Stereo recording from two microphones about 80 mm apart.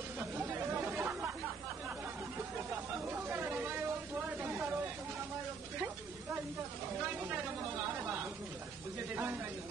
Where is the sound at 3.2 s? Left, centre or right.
Right.